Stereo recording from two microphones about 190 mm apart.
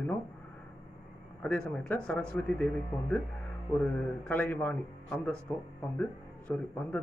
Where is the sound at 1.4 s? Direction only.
5° left (ahead or behind).